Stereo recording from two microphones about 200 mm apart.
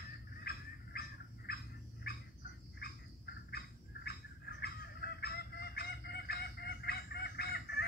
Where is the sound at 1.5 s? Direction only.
50° left (ahead or behind).